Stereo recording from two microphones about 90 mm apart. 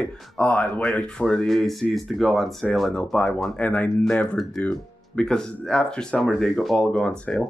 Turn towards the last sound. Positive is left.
turn(degrees=10)  # may be behind; listen again after turning